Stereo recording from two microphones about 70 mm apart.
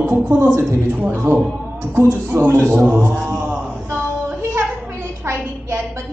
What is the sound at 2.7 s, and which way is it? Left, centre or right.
Speech, centre.